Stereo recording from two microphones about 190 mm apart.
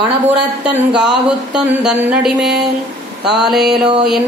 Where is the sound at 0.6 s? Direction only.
5° right (ahead or behind).